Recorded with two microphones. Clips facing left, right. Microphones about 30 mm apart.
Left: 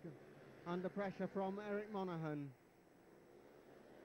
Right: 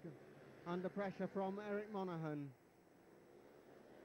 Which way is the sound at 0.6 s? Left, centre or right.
Left.